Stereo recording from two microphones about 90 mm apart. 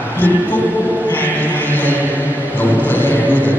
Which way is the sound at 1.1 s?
20° left (ahead or behind).